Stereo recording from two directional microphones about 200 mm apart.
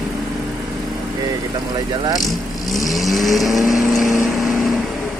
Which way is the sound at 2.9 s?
Centre (ahead or behind).